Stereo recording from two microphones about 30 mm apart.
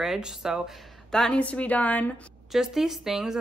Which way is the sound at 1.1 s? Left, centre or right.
Left.